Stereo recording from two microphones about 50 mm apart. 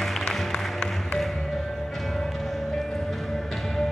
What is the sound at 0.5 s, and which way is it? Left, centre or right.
Music, centre.